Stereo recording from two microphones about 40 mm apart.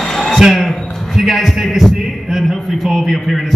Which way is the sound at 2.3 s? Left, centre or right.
Centre.